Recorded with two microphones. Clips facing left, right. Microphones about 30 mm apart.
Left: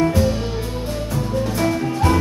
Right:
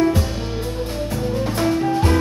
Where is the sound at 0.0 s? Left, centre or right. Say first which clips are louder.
Left 1 dB; centre.